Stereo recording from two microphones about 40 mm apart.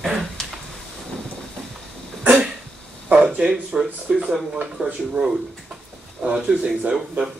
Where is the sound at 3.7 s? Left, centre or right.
Right.